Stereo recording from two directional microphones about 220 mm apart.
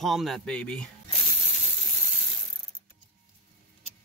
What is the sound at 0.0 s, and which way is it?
Speech, centre (ahead or behind).